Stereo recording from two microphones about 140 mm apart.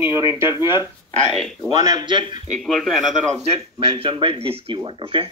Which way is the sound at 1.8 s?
30° right (ahead or behind).